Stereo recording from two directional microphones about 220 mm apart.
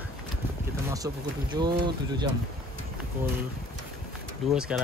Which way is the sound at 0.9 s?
20° right (ahead or behind).